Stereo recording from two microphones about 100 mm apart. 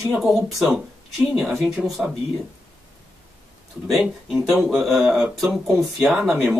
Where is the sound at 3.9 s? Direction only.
5° right (ahead or behind).